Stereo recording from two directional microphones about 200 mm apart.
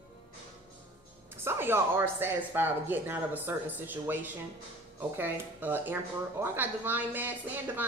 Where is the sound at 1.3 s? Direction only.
10° right (ahead or behind).